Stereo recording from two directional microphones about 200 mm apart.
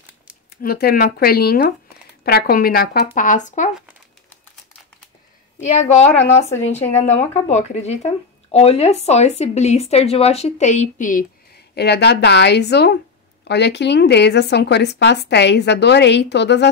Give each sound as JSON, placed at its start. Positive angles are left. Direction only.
{"t": 0.6, "sound": "speech", "side_deg": 50}
{"t": 3.2, "sound": "speech", "side_deg": 40}
{"t": 5.6, "sound": "speech", "side_deg": 35}